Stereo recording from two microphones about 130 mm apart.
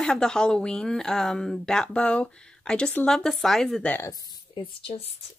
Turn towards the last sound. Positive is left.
turn(degrees=35)  # may be behind; listen again after turning